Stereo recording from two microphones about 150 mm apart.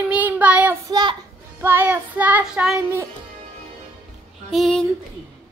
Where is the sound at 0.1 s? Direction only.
10° right (ahead or behind).